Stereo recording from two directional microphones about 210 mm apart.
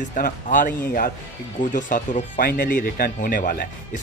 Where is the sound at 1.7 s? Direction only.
40° left (ahead or behind).